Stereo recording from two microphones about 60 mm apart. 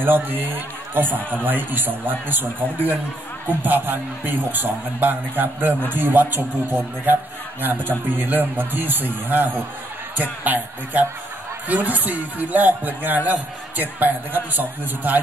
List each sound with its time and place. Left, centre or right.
0.0 s a man's voice: right